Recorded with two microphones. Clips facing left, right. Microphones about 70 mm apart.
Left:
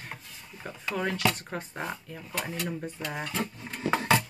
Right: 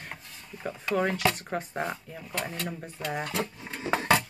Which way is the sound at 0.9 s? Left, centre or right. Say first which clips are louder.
Right 2 dB; centre.